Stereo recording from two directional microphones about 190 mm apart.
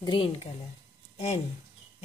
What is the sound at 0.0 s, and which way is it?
Speech, 25° left (ahead or behind).